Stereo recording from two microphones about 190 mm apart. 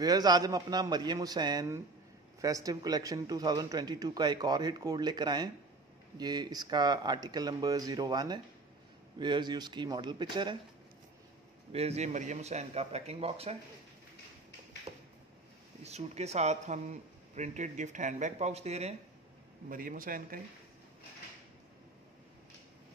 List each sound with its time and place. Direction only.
0.0 s a man's voice: 20° right (ahead or behind)
11.7 s speech: 35° right (ahead or behind)
15.8 s speech: 35° right (ahead or behind)
19.7 s a man's voice: 45° right (ahead or behind)